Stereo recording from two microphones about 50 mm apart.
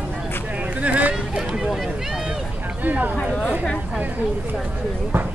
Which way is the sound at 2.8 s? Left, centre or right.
Right.